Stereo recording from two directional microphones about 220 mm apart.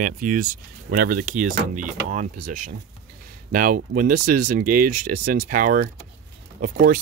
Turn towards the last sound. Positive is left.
turn(degrees=-40)  # may be behind; listen again after turning